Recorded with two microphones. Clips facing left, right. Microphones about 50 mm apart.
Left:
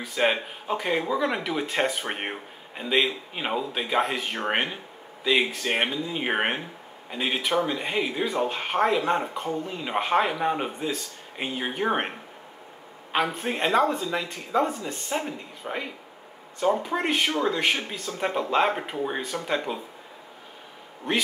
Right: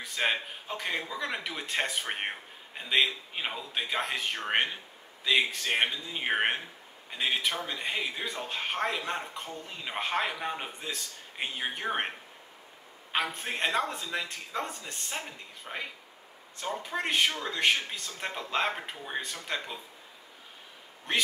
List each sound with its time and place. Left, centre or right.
0.0 s speech: centre
13.1 s speech: centre